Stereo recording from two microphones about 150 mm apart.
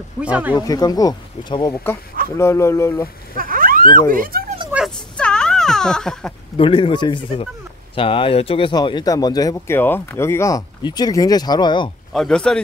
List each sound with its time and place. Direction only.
0.2 s speech: 10° right (ahead or behind)
0.6 s speech: 25° left (ahead or behind)
3.3 s a sound: 70° right (ahead or behind)
4.1 s speech: 70° right (ahead or behind)
4.8 s a sound: 5° left (ahead or behind)
6.5 s speech: 35° left (ahead or behind)
12.1 s speech: 5° left (ahead or behind)